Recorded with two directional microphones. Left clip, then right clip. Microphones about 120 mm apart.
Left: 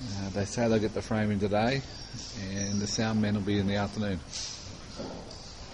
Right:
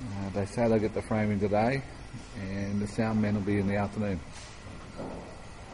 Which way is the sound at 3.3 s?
10° left (ahead or behind).